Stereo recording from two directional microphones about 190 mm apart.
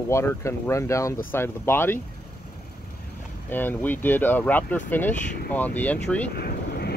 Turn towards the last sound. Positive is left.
turn(degrees=55)  # may be behind; listen again after turning